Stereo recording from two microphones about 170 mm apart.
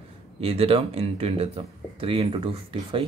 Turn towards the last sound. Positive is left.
turn(degrees=-30)  # may be behind; listen again after turning